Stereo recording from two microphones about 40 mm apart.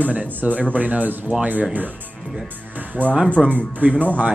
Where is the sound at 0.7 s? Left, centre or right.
Right.